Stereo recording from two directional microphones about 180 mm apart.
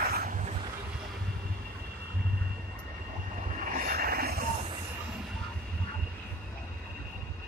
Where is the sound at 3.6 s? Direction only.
50° right (ahead or behind).